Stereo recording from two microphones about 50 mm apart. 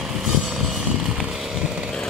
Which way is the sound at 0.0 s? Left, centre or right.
Centre.